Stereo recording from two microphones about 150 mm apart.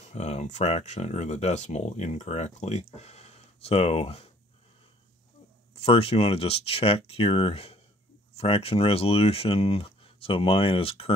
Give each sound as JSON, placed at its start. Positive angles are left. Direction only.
{"t": 0.0, "sound": "speech", "side_deg": 50}
{"t": 5.8, "sound": "speech", "side_deg": 40}